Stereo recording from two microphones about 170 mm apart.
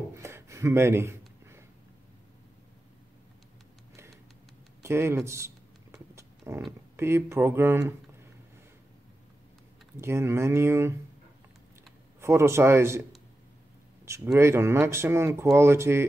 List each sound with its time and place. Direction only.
0.1 s a sound: 15° right (ahead or behind)
4.8 s a sound: 15° right (ahead or behind)
7.0 s speech: 15° right (ahead or behind)
9.9 s speech: 15° right (ahead or behind)
12.2 s speech: 15° right (ahead or behind)
14.0 s speech: 15° right (ahead or behind)